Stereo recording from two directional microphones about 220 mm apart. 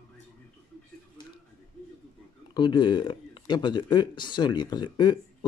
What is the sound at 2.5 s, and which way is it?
Speech, 20° left (ahead or behind).